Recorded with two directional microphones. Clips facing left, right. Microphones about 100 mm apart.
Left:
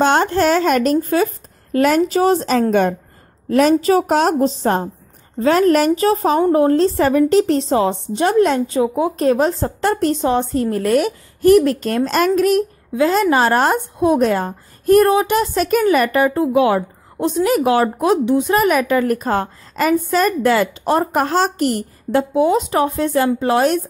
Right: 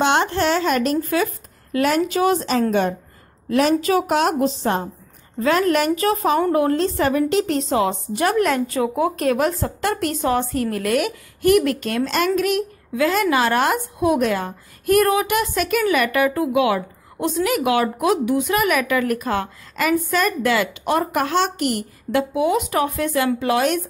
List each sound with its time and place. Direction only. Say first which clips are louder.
0.0 s a sound: left 4 dB; 40° left (ahead or behind)
1.0 s speech: left 4 dB; 35° left (ahead or behind)
2.7 s a woman's voice: left 4 dB; 50° left (ahead or behind)
3.4 s a woman's voice: left 4 dB; 40° left (ahead or behind)